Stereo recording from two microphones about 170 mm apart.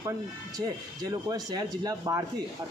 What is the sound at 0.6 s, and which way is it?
Speech, 20° right (ahead or behind).